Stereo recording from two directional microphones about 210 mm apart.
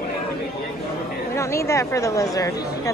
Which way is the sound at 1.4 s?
15° left (ahead or behind).